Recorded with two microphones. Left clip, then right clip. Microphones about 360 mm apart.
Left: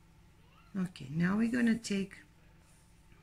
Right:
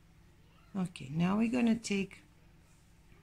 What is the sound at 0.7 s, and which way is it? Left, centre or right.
Speech, centre.